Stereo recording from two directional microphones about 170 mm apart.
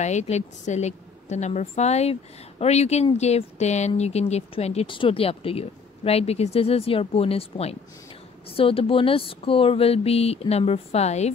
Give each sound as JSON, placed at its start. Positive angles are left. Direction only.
{"t": 0.0, "sound": "speech", "side_deg": 45}